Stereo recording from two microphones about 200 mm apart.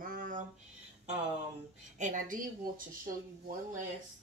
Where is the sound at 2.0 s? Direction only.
40° right (ahead or behind).